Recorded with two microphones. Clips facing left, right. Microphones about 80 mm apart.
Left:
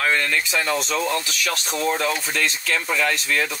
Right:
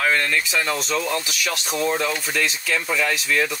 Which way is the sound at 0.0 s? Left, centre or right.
Centre.